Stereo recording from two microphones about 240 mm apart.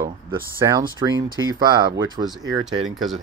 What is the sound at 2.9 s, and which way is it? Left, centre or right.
Speech, centre.